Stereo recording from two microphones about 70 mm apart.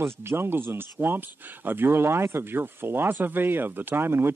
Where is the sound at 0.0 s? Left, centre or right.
Right.